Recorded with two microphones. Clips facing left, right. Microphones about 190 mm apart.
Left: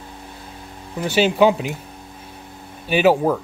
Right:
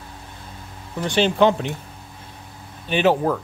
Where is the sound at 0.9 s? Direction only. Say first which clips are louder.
Left 2 dB; 5° left (ahead or behind).